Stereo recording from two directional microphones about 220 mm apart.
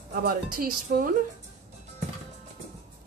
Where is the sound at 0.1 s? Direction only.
40° right (ahead or behind).